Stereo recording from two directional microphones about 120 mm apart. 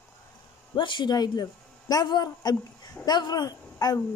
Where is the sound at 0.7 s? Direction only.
40° left (ahead or behind).